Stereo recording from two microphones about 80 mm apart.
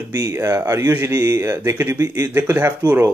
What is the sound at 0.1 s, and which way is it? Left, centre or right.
Speech, right.